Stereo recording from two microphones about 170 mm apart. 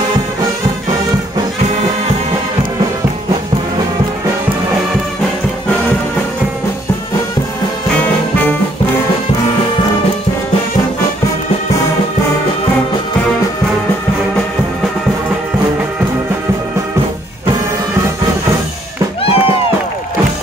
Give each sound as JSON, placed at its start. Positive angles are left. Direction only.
{"t": 19.2, "sound": "music", "side_deg": 35}